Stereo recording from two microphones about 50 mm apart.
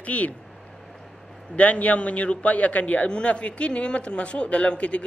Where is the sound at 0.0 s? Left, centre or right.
Left.